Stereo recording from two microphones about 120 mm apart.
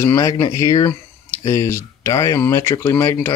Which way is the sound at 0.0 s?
25° left (ahead or behind).